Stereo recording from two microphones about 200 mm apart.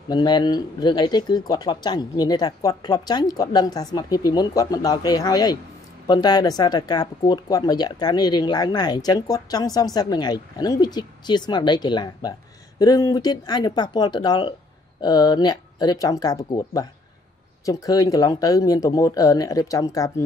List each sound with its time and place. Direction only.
0.1 s speech: 20° left (ahead or behind)